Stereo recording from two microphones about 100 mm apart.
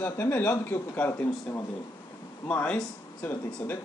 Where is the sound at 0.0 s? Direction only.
20° left (ahead or behind).